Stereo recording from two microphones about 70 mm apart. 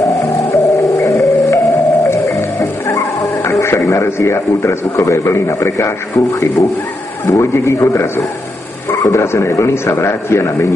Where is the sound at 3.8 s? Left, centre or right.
Left.